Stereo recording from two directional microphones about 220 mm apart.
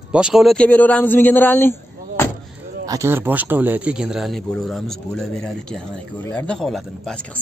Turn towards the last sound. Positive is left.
turn(degrees=5)  # may be behind; listen again after turning